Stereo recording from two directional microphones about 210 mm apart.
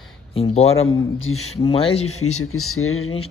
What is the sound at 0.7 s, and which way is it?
Speech, 75° left (ahead or behind).